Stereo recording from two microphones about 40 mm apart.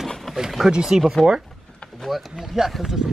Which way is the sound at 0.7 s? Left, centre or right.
Centre.